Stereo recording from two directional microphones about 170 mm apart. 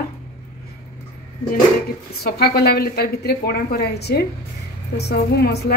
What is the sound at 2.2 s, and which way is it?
A woman's voice, 70° left (ahead or behind).